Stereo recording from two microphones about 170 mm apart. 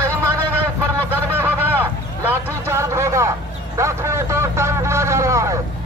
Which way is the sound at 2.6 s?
15° right (ahead or behind).